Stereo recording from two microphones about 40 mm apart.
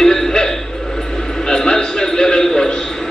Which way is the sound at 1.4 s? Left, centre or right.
Centre.